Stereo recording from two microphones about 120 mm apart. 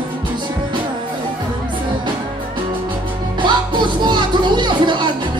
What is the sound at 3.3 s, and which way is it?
Music, 40° right (ahead or behind).